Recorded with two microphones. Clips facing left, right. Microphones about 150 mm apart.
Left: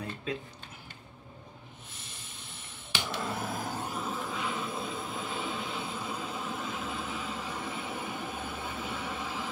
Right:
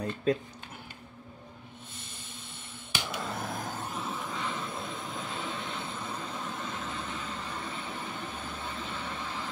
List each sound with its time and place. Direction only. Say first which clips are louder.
3.1 s vehicle: left 2 dB; 5° left (ahead or behind)